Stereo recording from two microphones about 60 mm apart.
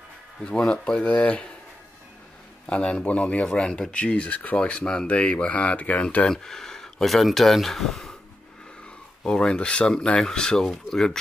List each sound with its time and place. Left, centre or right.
0.5 s speech: centre
2.7 s speech: centre
6.2 s speech: centre
9.2 s speech: centre